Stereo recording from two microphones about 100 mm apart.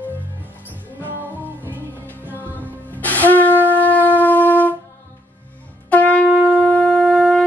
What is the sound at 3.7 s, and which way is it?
Shofar, 15° left (ahead or behind).